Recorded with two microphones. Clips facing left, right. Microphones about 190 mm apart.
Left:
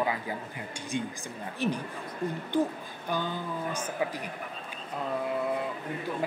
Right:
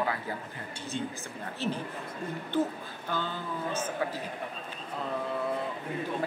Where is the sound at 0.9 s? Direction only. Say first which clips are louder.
Left 2 dB; 15° left (ahead or behind).